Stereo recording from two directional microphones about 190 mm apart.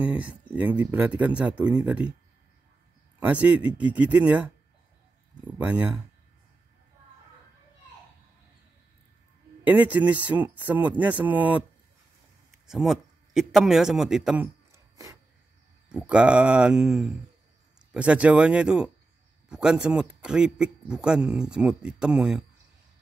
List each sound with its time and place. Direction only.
0.0 s speech: 5° right (ahead or behind)
3.2 s speech: 5° right (ahead or behind)
5.6 s speech: 10° right (ahead or behind)
9.7 s speech: 10° right (ahead or behind)
12.6 s a man's voice: centre (ahead or behind)
15.9 s a man's voice: 5° right (ahead or behind)